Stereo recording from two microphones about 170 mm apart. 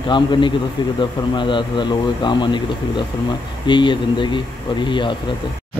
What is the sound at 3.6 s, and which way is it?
Speech, 30° left (ahead or behind).